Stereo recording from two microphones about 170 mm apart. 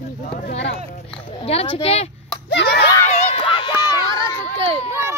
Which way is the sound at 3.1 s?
40° left (ahead or behind).